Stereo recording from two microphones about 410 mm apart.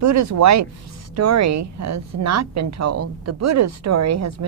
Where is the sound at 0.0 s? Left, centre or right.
Right.